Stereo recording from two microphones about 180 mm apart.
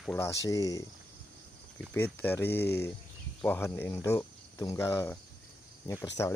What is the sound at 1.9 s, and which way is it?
Speech, 10° left (ahead or behind).